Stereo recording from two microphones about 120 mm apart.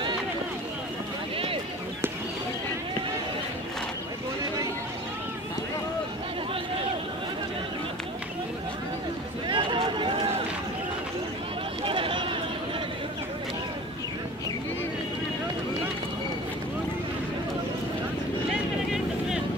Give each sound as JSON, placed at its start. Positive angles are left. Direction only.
{"t": 9.5, "sound": "run", "side_deg": -40}
{"t": 11.8, "sound": "a sound", "side_deg": -50}
{"t": 18.5, "sound": "vehicle", "side_deg": -5}